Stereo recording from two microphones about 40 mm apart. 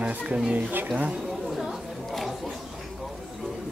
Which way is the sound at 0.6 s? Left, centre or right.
Right.